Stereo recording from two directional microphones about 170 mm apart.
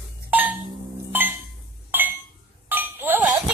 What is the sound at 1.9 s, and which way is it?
Chink, 10° right (ahead or behind).